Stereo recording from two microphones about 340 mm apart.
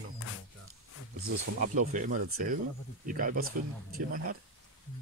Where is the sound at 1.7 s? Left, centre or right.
Right.